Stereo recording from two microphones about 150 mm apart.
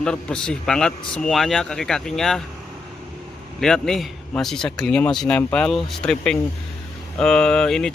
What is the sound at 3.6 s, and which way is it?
Speech, 5° left (ahead or behind).